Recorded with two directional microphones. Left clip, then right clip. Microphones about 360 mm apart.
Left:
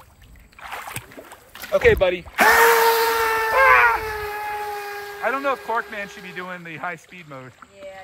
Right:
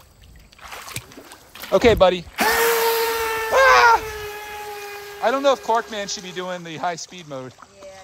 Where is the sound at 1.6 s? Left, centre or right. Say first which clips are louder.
Right 2 dB; right.